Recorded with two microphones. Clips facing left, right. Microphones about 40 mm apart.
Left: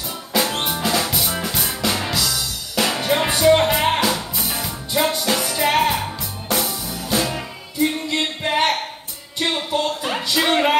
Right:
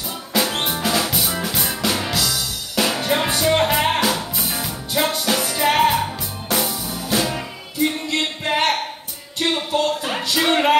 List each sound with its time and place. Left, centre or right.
0.7 s music: centre